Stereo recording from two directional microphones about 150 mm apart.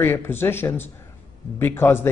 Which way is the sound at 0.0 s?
15° left (ahead or behind).